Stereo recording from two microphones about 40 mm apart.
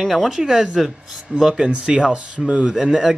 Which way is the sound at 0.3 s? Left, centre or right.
Centre.